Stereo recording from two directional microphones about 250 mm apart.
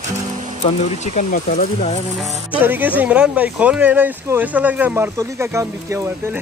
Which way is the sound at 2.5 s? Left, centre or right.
Centre.